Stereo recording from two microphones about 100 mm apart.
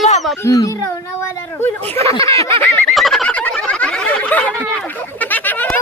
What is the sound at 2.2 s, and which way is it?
Speech, 30° left (ahead or behind).